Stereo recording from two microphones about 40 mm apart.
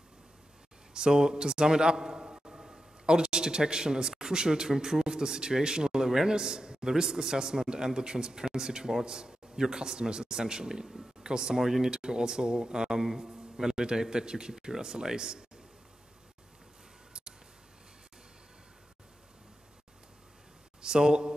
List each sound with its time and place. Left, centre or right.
0.9 s a man's voice: centre
20.8 s a man's voice: centre